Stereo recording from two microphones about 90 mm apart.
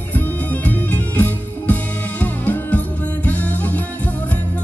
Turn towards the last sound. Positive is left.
turn(degrees=15)  # may be behind; listen again after turning